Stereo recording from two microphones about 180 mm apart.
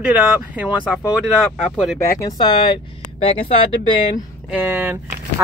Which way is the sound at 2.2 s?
25° left (ahead or behind).